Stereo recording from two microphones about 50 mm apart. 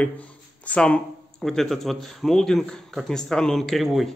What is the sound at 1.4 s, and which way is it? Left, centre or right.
A man's voice, centre.